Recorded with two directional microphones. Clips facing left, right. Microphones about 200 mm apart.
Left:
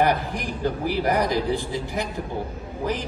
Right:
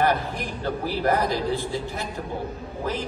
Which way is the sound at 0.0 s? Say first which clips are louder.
Left 1 dB; 15° left (ahead or behind).